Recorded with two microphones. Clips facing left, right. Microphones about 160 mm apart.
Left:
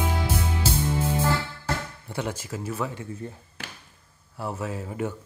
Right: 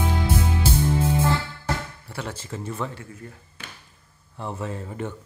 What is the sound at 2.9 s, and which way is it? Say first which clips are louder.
Speech: left 4 dB; 20° left (ahead or behind).